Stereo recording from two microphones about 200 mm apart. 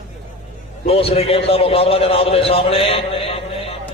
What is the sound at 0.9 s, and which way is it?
A man's voice, 30° left (ahead or behind).